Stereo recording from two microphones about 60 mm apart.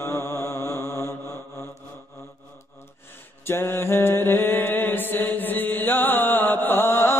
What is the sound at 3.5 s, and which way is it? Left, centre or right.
Mantra, left.